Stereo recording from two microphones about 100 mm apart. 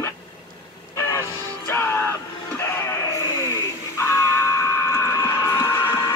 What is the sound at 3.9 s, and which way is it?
Music, 25° left (ahead or behind).